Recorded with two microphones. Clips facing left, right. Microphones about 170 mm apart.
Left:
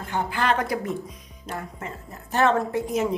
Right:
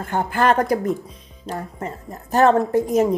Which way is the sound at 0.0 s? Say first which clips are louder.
Right 6 dB; 50° right (ahead or behind).